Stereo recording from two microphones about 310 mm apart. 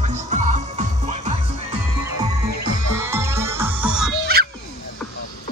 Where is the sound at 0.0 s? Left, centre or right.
Right.